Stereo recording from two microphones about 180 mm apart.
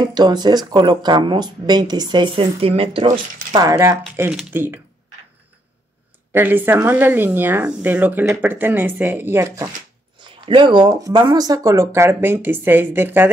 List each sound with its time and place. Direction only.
0.0 s speech: 20° right (ahead or behind)
3.5 s speech: 20° right (ahead or behind)
4.2 s speech: 5° right (ahead or behind)
6.3 s speech: 10° right (ahead or behind)
10.2 s speech: 25° right (ahead or behind); by 13.3 s 10° right (ahead or behind)